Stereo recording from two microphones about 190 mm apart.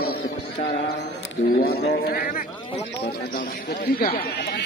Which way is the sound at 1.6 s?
55° left (ahead or behind).